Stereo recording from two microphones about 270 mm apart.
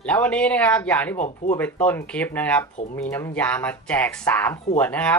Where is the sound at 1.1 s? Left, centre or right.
Left.